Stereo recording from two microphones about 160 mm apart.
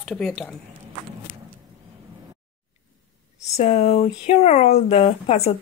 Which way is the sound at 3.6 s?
40° left (ahead or behind).